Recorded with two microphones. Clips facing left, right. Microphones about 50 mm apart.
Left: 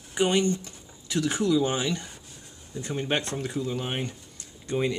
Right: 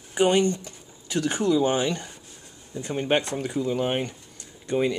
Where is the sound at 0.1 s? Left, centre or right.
Centre.